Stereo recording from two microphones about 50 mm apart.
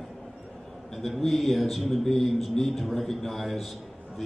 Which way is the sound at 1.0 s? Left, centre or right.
Centre.